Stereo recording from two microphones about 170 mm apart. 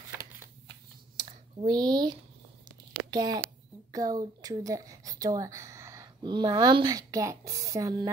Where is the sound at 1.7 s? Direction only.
25° right (ahead or behind).